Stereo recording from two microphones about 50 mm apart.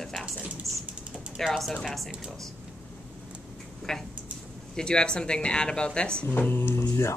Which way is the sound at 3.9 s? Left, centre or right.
Centre.